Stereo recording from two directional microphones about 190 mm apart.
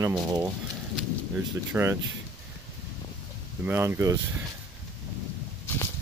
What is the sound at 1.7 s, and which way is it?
Speech, 15° right (ahead or behind).